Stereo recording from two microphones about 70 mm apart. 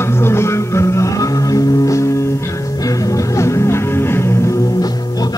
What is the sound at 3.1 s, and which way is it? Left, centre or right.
Music, left.